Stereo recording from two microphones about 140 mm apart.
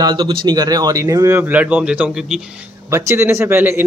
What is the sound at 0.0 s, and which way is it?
A man's voice, 30° right (ahead or behind).